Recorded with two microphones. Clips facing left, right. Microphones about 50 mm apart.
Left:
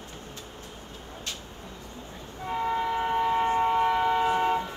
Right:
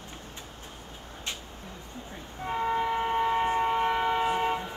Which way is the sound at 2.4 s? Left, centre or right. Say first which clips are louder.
Even; centre.